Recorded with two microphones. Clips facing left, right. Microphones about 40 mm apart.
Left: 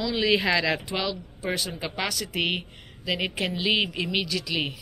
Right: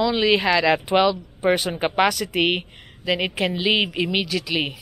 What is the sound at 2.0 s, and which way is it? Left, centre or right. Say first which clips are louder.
A woman's voice: right 6 dB; centre.